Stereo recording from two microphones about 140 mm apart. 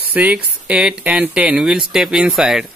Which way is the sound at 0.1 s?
10° right (ahead or behind).